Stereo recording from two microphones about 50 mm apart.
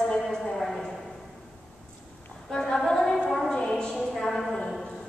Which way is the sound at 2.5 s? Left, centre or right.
Centre.